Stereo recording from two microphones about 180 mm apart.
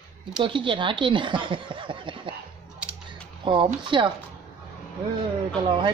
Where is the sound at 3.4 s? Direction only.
25° right (ahead or behind).